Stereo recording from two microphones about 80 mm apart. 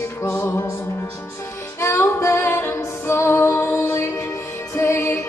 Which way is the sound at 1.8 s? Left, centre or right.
Left.